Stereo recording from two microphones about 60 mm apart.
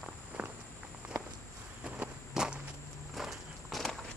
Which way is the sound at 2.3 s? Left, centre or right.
Centre.